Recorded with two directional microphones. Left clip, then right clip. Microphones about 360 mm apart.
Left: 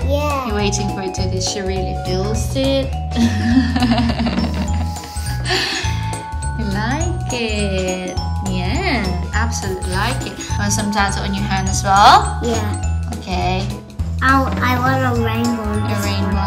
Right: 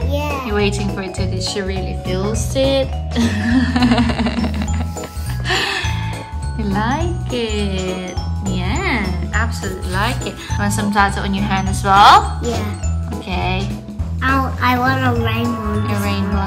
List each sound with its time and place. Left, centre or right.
0.1 s speech: centre
5.5 s music: centre
7.3 s music: right
8.7 s music: centre
10.6 s speech: centre